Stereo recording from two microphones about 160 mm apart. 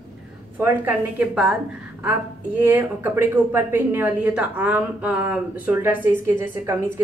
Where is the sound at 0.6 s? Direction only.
15° right (ahead or behind).